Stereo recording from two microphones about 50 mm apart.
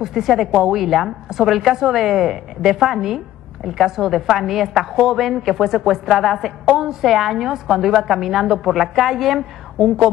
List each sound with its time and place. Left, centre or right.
0.0 s a woman's voice: centre